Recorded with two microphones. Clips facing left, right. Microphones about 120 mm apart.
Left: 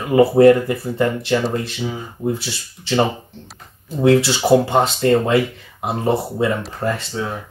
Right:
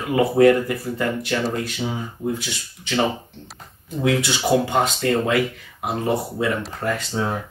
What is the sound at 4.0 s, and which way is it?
Speech, 35° left (ahead or behind).